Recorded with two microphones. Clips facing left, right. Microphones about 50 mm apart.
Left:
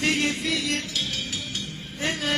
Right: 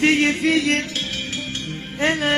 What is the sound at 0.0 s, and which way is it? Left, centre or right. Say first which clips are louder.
Music: right 7 dB; right.